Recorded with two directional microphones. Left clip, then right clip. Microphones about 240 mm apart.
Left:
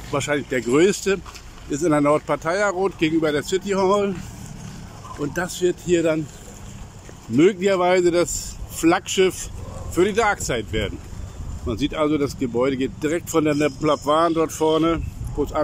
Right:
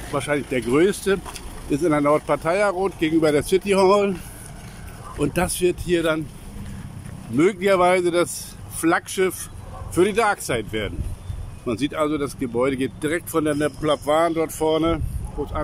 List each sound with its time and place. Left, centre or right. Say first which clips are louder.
0.1 s speech: left 1 dB; centre
5.2 s speech: right 2 dB; centre
7.3 s speech: even; centre